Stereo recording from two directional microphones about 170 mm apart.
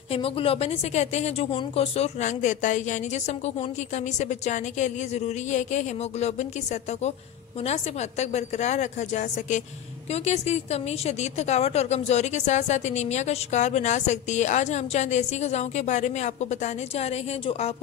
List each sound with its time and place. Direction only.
0.1 s a woman's voice: 35° left (ahead or behind)
7.6 s a woman's voice: 40° left (ahead or behind)